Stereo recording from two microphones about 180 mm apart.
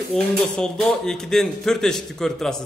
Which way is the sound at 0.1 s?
5° left (ahead or behind).